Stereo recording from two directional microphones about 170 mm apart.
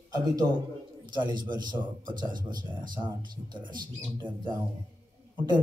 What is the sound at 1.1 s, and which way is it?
Speech, 25° right (ahead or behind).